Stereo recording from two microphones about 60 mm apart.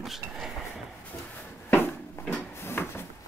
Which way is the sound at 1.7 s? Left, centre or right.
Left.